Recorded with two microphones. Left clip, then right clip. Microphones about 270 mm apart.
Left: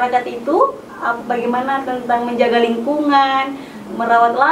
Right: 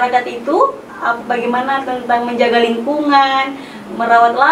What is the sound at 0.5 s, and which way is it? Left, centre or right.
Speech, left.